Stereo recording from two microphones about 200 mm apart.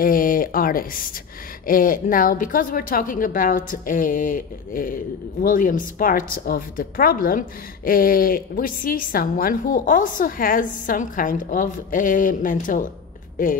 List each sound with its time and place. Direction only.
0.0 s a woman's voice: 45° left (ahead or behind)